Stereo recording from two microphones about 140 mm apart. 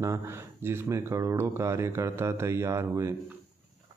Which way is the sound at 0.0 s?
20° right (ahead or behind).